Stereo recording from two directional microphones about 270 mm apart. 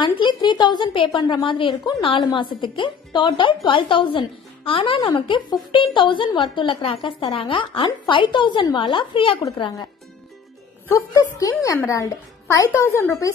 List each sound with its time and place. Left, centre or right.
0.0 s a woman's voice: centre
11.3 s a woman's voice: centre